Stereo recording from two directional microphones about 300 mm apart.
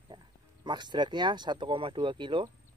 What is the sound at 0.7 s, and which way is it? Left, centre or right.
Speech, centre.